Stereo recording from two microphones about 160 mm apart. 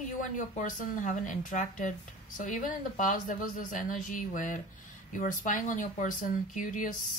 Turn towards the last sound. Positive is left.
turn(degrees=55)  # may be behind; listen again after turning